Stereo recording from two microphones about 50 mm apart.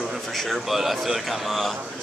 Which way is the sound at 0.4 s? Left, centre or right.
Centre.